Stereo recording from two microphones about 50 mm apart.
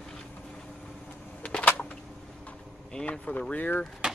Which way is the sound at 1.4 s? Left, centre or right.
Left.